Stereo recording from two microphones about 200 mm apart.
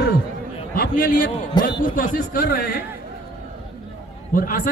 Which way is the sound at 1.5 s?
20° left (ahead or behind).